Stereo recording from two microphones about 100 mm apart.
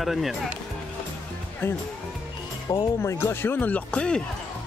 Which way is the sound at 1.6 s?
25° left (ahead or behind).